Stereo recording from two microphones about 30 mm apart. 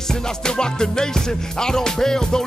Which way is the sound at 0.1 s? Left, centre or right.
Left.